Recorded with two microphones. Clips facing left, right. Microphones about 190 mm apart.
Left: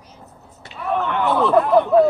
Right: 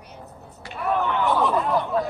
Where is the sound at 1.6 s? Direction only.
65° left (ahead or behind).